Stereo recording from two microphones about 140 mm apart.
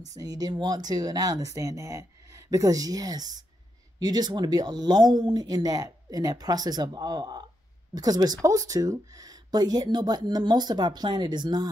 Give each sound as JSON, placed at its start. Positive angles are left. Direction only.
{"t": 0.1, "sound": "speech", "side_deg": -25}